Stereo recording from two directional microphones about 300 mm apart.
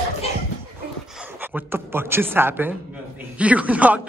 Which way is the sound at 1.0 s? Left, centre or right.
Centre.